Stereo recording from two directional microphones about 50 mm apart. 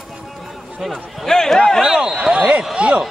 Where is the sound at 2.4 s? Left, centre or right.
Right.